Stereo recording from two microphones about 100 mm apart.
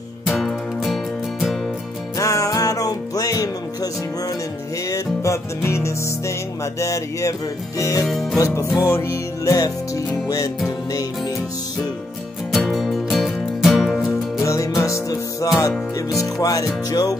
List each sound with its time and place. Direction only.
0.3 s music: centre (ahead or behind)
2.1 s music: 35° left (ahead or behind)
8.1 s music: centre (ahead or behind)
8.4 s music: 35° left (ahead or behind)
12.4 s music: centre (ahead or behind)
14.4 s music: 30° left (ahead or behind)